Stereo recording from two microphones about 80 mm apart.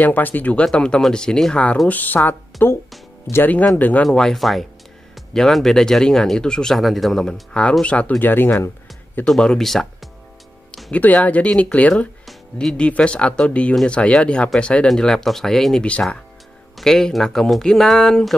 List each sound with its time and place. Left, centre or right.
0.0 s speech: left
4.0 s speech: centre; by 8.6 s left
9.2 s speech: centre
10.9 s speech: centre